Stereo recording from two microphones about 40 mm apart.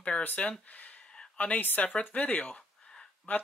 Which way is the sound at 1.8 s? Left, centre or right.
Left.